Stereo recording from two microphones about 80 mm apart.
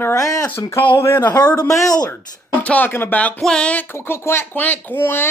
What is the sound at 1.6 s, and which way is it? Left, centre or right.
Speech, left.